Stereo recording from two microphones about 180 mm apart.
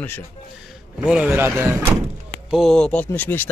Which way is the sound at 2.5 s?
Centre (ahead or behind).